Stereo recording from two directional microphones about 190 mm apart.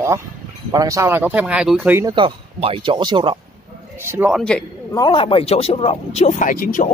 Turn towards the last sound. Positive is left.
turn(degrees=45)  # may be behind; listen again after turning